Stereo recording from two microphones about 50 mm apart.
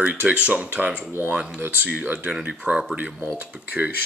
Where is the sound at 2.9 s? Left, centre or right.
Right.